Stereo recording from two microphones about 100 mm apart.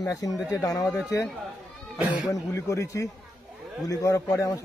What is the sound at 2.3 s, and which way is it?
A man's voice, 30° left (ahead or behind).